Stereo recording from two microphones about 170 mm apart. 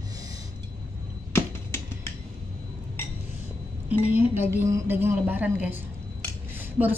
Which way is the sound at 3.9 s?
10° right (ahead or behind).